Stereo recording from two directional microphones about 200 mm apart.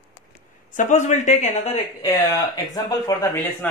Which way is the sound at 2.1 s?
20° left (ahead or behind).